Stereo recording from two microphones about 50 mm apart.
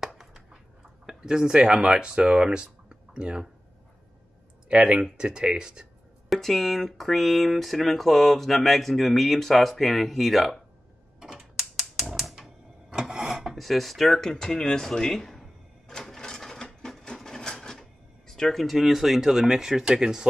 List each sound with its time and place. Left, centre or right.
0.2 s a sound: centre
1.0 s speech: centre
4.7 s speech: centre
6.2 s speech: centre
11.3 s a sound: centre
12.1 s typewriter: centre
12.9 s speech: centre
16.0 s sewing machine: centre